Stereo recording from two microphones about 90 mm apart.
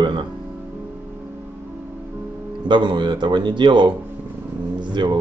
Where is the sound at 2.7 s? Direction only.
60° right (ahead or behind).